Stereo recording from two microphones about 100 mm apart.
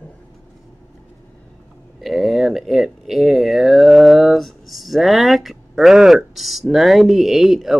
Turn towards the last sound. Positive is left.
turn(degrees=0)  # may be behind; listen again after turning